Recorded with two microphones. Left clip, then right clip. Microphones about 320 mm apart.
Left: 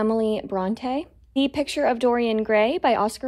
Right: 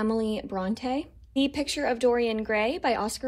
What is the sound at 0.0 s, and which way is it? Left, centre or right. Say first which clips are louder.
Speech: left 6 dB; left.